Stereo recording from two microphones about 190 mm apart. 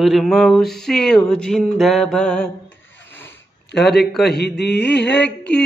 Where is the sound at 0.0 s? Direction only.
Centre (ahead or behind).